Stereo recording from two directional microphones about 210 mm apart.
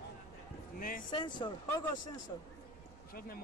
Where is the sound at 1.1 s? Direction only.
20° left (ahead or behind).